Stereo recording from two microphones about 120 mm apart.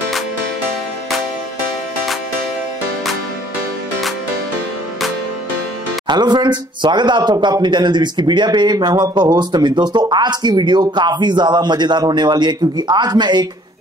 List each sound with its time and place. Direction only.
6.0 s speech: 35° right (ahead or behind)